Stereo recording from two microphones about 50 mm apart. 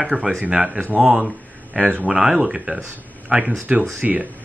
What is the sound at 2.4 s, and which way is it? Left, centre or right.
Speech, right.